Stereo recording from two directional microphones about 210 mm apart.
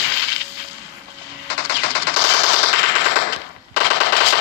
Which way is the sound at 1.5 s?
55° left (ahead or behind).